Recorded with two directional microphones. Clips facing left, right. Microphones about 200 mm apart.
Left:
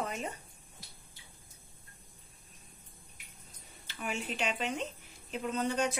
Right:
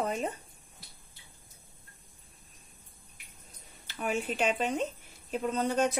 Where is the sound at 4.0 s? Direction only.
45° right (ahead or behind).